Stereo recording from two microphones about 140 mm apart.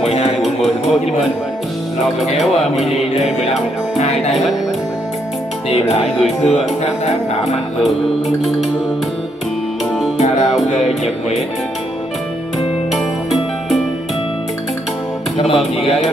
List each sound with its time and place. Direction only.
0.0 s music: 45° left (ahead or behind)
2.4 s speech: centre (ahead or behind)
4.3 s speech: centre (ahead or behind)
5.7 s speech: 50° left (ahead or behind)
10.1 s music: 55° left (ahead or behind)
12.5 s music: centre (ahead or behind)
15.3 s speech: 40° left (ahead or behind)